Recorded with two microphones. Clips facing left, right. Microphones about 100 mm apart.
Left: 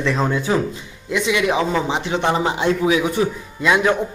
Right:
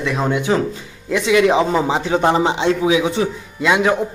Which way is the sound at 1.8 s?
35° right (ahead or behind).